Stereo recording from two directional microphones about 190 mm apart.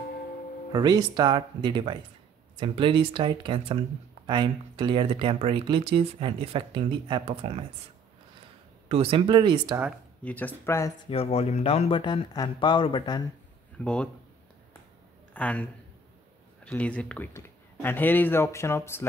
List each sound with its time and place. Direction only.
0.7 s speech: 20° right (ahead or behind)
8.8 s speech: 30° right (ahead or behind)
10.2 s speech: 10° left (ahead or behind)
11.1 s speech: 30° left (ahead or behind)
13.8 s speech: 5° left (ahead or behind)
15.3 s a man's voice: 5° left (ahead or behind)